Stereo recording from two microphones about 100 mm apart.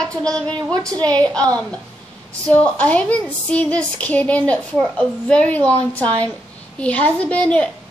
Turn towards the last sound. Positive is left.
turn(degrees=10)  # may be behind; listen again after turning